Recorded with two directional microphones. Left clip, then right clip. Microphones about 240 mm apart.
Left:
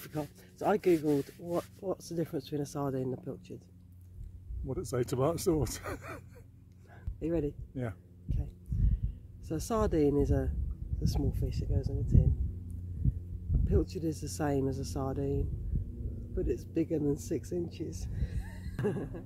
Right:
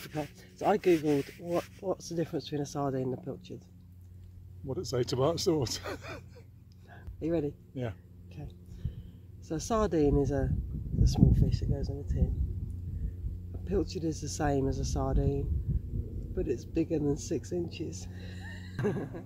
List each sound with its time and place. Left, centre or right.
0.0 s speech: centre
4.6 s speech: centre
7.2 s speech: centre
7.7 s speech: centre
8.3 s speech: centre
8.7 s a sound: centre
9.5 s speech: centre
13.7 s speech: centre